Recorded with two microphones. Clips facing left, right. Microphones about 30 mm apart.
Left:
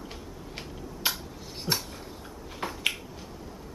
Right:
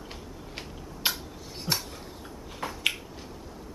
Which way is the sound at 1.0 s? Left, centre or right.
Centre.